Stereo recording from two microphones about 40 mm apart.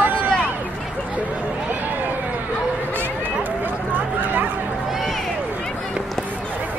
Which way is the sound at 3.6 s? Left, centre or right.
Right.